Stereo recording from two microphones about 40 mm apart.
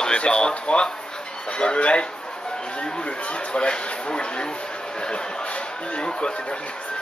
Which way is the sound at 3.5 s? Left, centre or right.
Left.